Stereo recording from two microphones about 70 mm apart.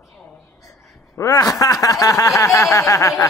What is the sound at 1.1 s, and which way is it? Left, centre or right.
Speech, left.